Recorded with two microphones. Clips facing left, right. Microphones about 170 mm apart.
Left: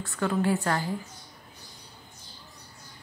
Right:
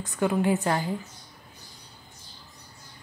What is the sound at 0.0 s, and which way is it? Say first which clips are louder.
Speech: right 2 dB; 15° right (ahead or behind).